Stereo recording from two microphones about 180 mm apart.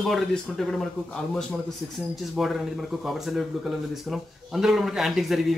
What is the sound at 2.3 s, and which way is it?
Speech, centre (ahead or behind).